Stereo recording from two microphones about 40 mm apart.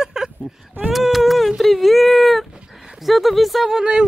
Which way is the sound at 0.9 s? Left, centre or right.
Centre.